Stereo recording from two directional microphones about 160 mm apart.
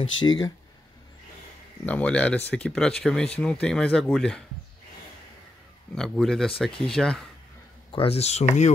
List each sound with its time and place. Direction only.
0.0 s speech: 30° left (ahead or behind)
1.9 s speech: 10° left (ahead or behind)
5.9 s speech: centre (ahead or behind)
7.9 s speech: 35° left (ahead or behind)